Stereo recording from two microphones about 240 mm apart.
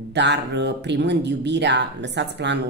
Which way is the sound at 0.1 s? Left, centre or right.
Right.